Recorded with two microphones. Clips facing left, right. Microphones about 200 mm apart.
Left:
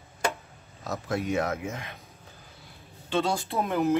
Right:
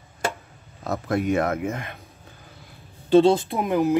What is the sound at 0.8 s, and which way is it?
Speech, 55° right (ahead or behind).